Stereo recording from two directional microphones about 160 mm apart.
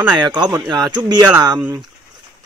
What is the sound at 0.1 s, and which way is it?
Speech, 25° right (ahead or behind).